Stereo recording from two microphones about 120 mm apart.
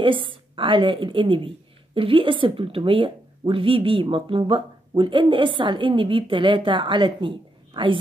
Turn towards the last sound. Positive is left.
turn(degrees=-45)  # may be behind; listen again after turning